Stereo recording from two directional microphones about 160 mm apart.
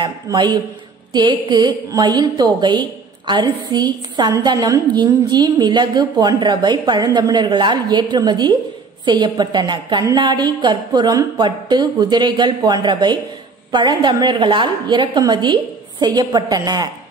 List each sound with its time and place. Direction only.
0.0 s a woman's voice: 25° right (ahead or behind)